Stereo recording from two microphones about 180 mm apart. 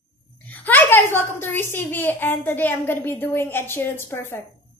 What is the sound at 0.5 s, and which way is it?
A child's voice, 10° left (ahead or behind).